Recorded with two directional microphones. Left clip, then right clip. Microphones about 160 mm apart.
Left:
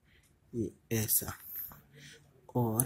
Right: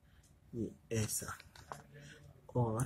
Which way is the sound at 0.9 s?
30° left (ahead or behind).